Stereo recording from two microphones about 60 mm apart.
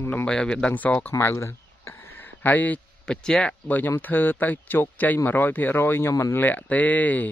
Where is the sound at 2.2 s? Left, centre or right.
Left.